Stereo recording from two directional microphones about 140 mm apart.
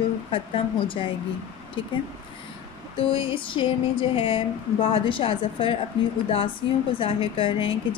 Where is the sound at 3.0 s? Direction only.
40° left (ahead or behind).